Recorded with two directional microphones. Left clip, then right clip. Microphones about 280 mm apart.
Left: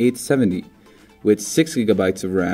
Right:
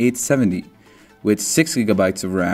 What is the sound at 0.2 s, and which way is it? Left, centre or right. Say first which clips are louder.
Speech: even; centre.